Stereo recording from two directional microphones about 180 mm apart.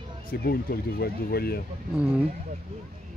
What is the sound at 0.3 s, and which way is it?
Speech, 55° left (ahead or behind).